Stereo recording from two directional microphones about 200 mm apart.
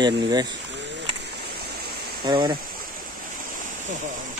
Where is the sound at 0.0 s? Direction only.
20° right (ahead or behind).